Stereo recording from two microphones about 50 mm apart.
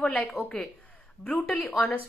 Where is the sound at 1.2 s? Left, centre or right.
Left.